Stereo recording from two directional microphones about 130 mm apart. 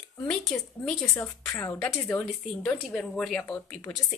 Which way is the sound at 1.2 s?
25° left (ahead or behind).